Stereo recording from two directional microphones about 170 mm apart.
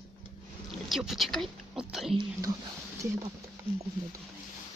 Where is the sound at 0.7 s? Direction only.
Centre (ahead or behind).